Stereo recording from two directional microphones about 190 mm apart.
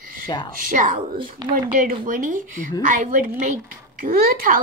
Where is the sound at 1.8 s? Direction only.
45° right (ahead or behind).